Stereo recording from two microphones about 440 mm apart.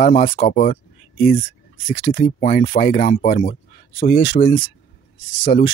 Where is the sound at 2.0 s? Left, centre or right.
Centre.